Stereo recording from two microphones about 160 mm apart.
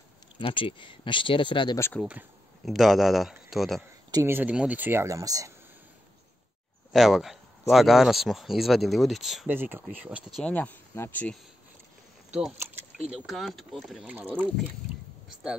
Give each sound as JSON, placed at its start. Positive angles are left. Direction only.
{"t": 0.4, "sound": "speech", "side_deg": 35}
{"t": 2.0, "sound": "speech", "side_deg": -5}
{"t": 4.1, "sound": "speech", "side_deg": -15}
{"t": 6.9, "sound": "speech", "side_deg": 0}
{"t": 9.5, "sound": "speech", "side_deg": -15}
{"t": 10.4, "sound": "speech", "side_deg": 10}
{"t": 12.3, "sound": "speech", "side_deg": -5}
{"t": 14.1, "sound": "speech", "side_deg": -10}